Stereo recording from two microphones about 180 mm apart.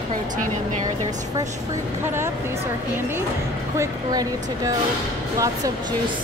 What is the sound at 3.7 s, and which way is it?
Speech, 20° right (ahead or behind).